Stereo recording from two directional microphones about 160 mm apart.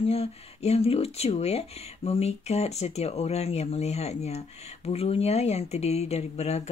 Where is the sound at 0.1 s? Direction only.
40° left (ahead or behind).